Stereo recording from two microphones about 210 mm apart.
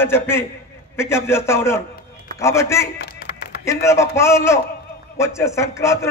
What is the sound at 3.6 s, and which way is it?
A man's voice, 15° left (ahead or behind).